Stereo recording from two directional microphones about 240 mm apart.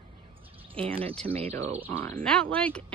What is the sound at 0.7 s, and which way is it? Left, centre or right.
Speech, right.